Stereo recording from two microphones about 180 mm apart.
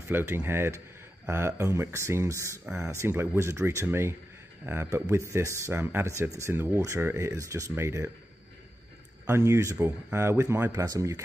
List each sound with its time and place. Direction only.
0.1 s speech: 15° right (ahead or behind)
9.2 s speech: 15° right (ahead or behind)